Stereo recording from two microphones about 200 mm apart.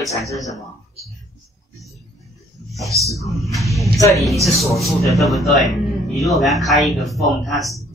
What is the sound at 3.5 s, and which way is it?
A man's voice, centre (ahead or behind).